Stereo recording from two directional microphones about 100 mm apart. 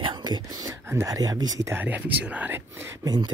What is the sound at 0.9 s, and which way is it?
Speech, 35° right (ahead or behind).